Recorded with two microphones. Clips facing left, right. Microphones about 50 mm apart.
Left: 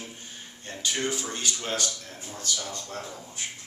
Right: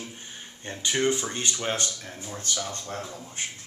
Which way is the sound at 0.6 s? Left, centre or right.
Right.